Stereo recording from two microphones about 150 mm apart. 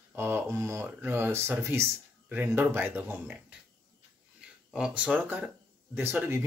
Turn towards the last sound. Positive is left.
turn(degrees=-15)  # may be behind; listen again after turning